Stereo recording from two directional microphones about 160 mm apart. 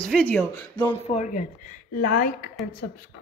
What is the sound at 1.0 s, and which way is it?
A woman's voice, 45° left (ahead or behind).